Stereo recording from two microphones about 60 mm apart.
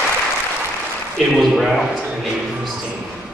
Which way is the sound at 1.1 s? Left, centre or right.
Centre.